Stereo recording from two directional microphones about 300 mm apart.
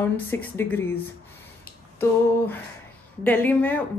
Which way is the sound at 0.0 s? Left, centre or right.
Centre.